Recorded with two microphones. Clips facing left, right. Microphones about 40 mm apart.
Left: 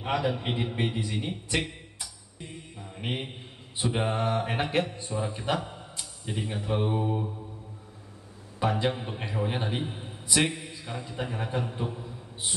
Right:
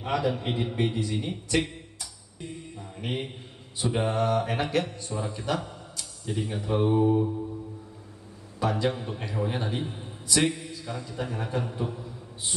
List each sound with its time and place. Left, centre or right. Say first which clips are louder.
0.0 s a man's voice: right 1 dB; centre
2.0 s music: right 1 dB; centre
3.7 s a man's voice: right 1 dB; left
8.5 s a man's voice: even; left
11.7 s a sound: right 1 dB; left